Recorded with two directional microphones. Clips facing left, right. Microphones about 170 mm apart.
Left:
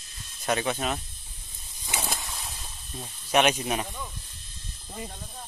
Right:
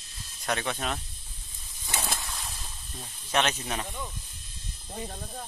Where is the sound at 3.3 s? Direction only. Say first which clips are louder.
Left 5 dB; 15° left (ahead or behind).